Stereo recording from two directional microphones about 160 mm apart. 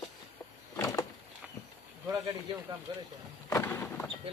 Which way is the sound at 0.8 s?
20° left (ahead or behind).